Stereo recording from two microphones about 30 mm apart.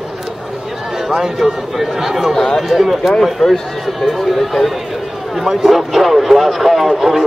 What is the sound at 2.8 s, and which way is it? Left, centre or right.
Speech, centre.